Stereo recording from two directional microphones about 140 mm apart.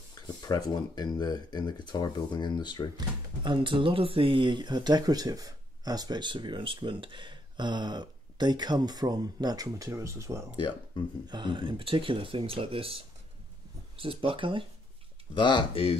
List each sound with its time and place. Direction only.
0.4 s speech: 30° left (ahead or behind)
3.0 s speech: 35° right (ahead or behind)
11.2 s speech: 35° right (ahead or behind)
15.3 s speech: 35° left (ahead or behind)